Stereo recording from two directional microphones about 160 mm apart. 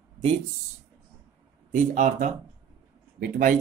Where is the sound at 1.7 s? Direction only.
50° right (ahead or behind).